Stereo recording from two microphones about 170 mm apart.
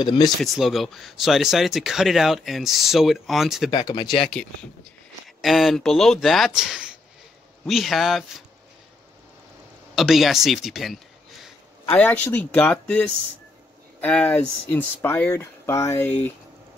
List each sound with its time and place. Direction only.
0.0 s speech: 25° left (ahead or behind)
0.4 s speech: centre (ahead or behind)
3.7 s speech: 25° left (ahead or behind)
4.3 s speech: 5° left (ahead or behind)
9.9 s speech: centre (ahead or behind)
11.9 s speech: 10° left (ahead or behind)